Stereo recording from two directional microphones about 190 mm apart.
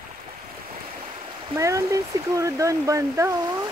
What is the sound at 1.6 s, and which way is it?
Speech, 15° right (ahead or behind).